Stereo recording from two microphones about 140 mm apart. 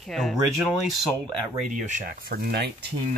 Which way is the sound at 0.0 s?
Centre (ahead or behind).